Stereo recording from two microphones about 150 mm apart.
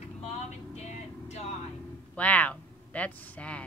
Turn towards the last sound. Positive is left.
turn(degrees=10)  # may be behind; listen again after turning